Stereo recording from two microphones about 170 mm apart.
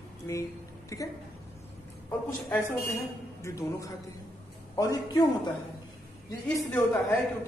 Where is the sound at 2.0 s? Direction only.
15° left (ahead or behind).